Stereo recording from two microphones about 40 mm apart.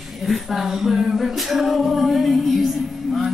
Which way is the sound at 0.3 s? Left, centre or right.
Centre.